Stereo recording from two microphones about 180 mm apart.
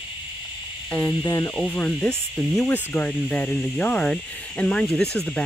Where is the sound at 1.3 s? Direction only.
20° left (ahead or behind).